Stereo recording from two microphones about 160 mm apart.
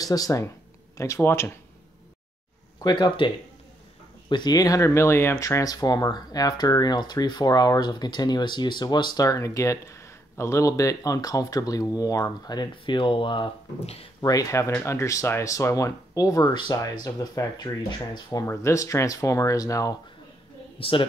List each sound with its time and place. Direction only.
0.0 s speech: 20° left (ahead or behind)
2.8 s speech: 25° left (ahead or behind)
4.3 s speech: 25° left (ahead or behind)
20.8 s a man's voice: 35° left (ahead or behind)